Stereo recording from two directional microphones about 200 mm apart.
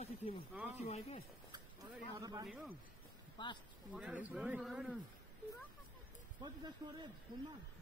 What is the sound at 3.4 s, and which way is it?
Speech, 20° left (ahead or behind).